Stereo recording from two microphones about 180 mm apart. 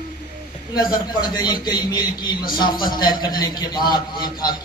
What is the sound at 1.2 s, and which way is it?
A man's voice, 25° left (ahead or behind).